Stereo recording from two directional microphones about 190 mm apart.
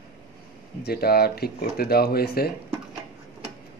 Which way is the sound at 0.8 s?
55° left (ahead or behind).